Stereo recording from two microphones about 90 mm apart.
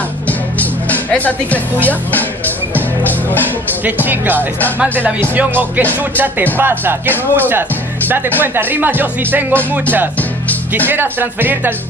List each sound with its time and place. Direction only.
0.6 s music: 15° left (ahead or behind)
2.7 s music: 20° left (ahead or behind)
3.8 s speech: 20° right (ahead or behind)
4.4 s speech: 20° left (ahead or behind)
4.9 s speech: 20° right (ahead or behind)
10.9 s speech: 20° right (ahead or behind)